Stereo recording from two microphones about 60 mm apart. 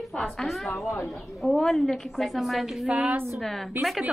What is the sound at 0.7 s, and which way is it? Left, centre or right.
Speech, left.